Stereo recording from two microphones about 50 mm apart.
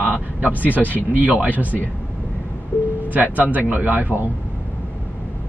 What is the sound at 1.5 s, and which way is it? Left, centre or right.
Speech, left.